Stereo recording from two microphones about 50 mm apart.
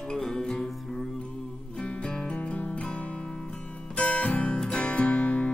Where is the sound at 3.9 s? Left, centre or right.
Left.